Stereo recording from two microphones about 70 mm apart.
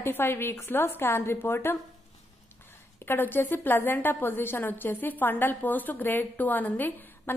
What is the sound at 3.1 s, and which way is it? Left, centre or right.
A woman's voice, left.